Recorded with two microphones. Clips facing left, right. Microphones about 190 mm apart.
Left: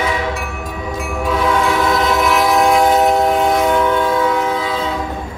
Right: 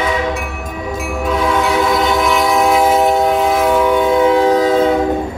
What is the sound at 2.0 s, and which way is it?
Train, centre (ahead or behind).